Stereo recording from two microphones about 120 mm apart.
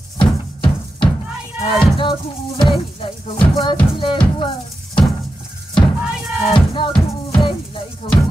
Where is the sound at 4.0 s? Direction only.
45° left (ahead or behind).